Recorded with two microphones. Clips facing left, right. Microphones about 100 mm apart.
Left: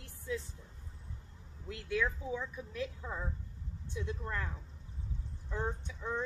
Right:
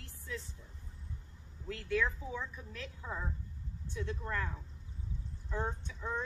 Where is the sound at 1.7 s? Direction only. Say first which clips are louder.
Right 1 dB; 15° left (ahead or behind).